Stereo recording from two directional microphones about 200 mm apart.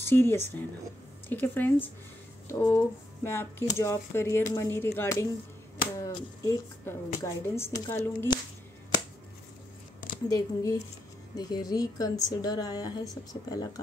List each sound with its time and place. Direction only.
0.0 s a woman's voice: 10° left (ahead or behind)
10.2 s a woman's voice: 15° left (ahead or behind)